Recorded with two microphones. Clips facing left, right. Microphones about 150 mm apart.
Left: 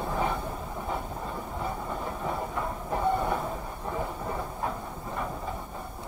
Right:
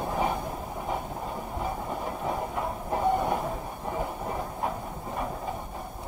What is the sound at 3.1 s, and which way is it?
Train, 15° right (ahead or behind).